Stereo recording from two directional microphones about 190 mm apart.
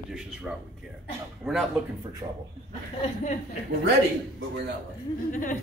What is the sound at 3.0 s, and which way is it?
Speech, 40° left (ahead or behind).